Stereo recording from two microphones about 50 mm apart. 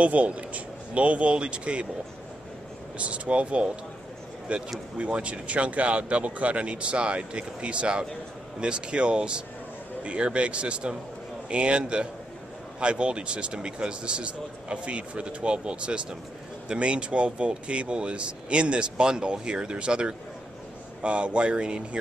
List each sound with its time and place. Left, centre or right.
0.0 s speech: right
3.0 s speech: right